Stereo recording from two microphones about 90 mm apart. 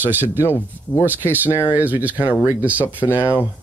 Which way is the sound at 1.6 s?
20° right (ahead or behind).